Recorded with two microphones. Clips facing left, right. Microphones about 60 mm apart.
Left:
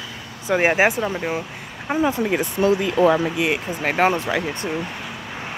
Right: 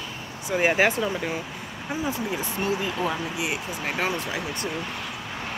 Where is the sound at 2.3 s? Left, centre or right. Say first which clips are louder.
Left 8 dB; left.